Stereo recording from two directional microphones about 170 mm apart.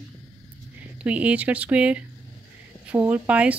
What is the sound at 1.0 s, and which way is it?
Speech, 10° right (ahead or behind).